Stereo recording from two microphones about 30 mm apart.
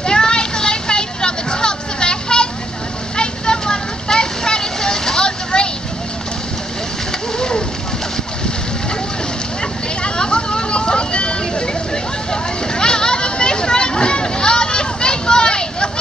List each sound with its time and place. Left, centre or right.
0.0 s vehicle: left
7.3 s a sound: left
10.0 s vehicle: left